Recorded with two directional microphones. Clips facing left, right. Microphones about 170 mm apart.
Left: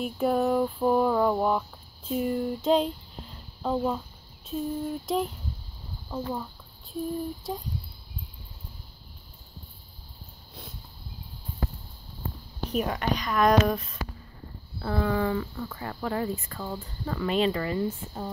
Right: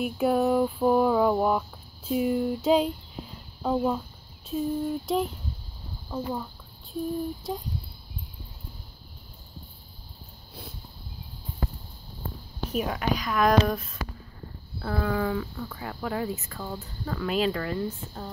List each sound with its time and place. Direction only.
0.0 s speech: 5° right (ahead or behind)
6.3 s a sound: centre (ahead or behind)
12.7 s speech: centre (ahead or behind)